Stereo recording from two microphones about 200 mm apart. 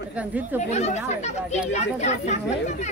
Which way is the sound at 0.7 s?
35° left (ahead or behind).